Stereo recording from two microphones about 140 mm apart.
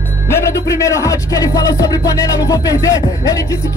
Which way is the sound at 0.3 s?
20° left (ahead or behind).